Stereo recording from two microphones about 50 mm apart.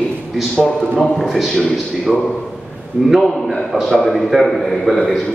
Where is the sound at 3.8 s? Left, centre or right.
Centre.